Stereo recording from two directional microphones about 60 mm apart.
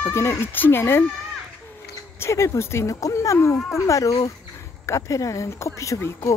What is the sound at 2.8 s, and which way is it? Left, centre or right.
Speech, left.